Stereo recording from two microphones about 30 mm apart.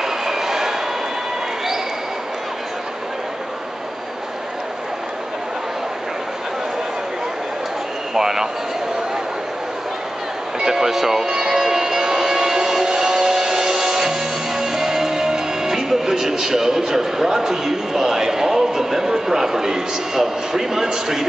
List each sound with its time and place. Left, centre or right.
0.0 s train: centre
8.1 s a man's voice: centre
10.6 s speech: centre
11.2 s music: right